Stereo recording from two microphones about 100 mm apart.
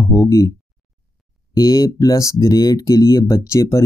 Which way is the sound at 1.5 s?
40° left (ahead or behind).